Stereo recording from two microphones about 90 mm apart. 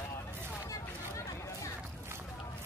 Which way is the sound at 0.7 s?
35° left (ahead or behind).